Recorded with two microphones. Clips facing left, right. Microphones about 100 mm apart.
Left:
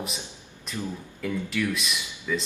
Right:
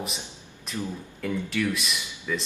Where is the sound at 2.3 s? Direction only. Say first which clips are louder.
Left 1 dB; centre (ahead or behind).